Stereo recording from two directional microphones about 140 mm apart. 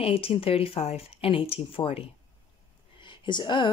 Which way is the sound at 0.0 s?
45° left (ahead or behind).